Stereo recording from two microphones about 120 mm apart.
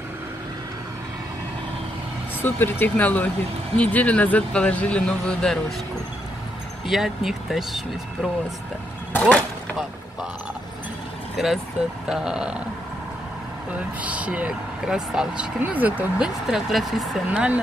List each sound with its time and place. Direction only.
2.4 s speech: 15° left (ahead or behind)
6.9 s speech: centre (ahead or behind)
9.1 s speech: 10° left (ahead or behind)
11.3 s speech: centre (ahead or behind)
13.7 s speech: 10° right (ahead or behind)